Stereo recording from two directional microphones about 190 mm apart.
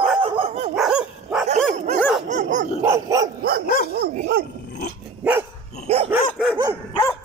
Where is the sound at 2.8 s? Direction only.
15° right (ahead or behind).